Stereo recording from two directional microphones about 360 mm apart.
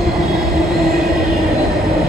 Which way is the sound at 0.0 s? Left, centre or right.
Centre.